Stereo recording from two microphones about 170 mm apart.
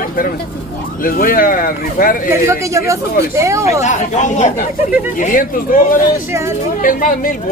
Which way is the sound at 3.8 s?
45° left (ahead or behind).